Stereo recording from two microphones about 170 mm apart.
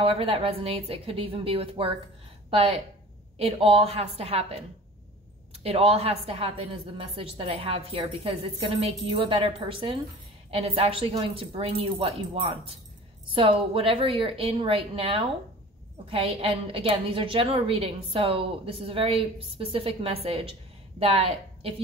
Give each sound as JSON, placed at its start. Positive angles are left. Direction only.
{"t": 0.0, "sound": "a woman's voice", "side_deg": -35}
{"t": 5.6, "sound": "a woman's voice", "side_deg": -35}